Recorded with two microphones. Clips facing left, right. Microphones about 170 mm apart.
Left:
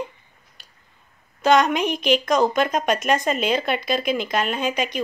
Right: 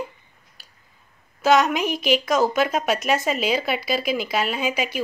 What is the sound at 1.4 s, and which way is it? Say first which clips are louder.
A woman's voice: left 1 dB; 5° right (ahead or behind).